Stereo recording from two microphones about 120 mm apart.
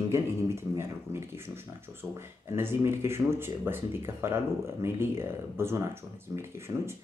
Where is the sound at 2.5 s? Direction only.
20° right (ahead or behind).